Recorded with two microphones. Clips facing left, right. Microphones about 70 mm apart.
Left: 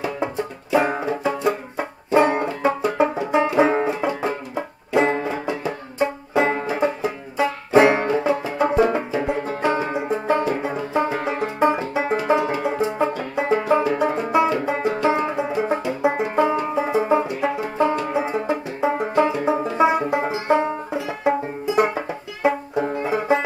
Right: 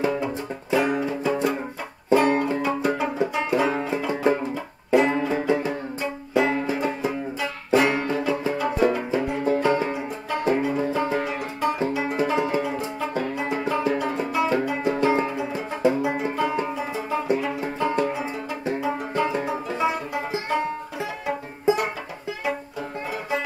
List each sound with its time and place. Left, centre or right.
0.7 s banjo: left
4.2 s music: left
5.9 s banjo: left
8.5 s music: left
11.9 s banjo: left
13.4 s music: left
16.0 s banjo: left
18.0 s music: left
22.4 s banjo: left